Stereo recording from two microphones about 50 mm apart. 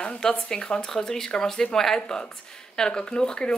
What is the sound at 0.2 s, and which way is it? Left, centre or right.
Speech, centre.